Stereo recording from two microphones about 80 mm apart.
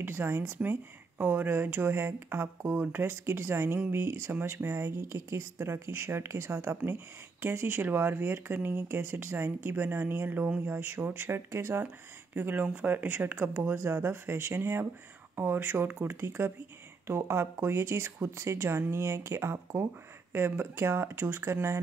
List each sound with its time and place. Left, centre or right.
0.0 s speech: right